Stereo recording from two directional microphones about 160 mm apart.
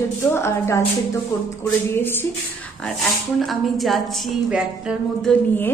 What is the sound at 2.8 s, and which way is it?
A woman's voice, centre (ahead or behind).